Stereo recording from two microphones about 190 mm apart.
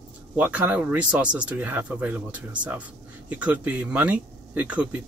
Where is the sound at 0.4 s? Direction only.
10° right (ahead or behind).